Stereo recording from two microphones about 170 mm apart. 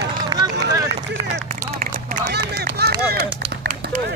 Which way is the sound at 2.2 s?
75° right (ahead or behind).